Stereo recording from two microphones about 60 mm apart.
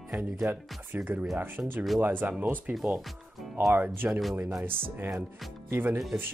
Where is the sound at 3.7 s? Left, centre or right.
Right.